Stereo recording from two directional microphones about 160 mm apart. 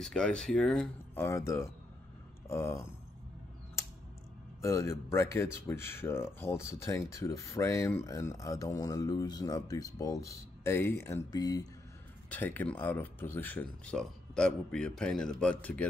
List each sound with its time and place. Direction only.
0.0 s speech: 5° left (ahead or behind)
1.2 s speech: 20° left (ahead or behind)
4.6 s speech: 20° left (ahead or behind)
12.3 s speech: 10° left (ahead or behind)